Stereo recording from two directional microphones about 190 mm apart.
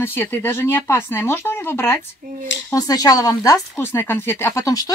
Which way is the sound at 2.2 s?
50° right (ahead or behind).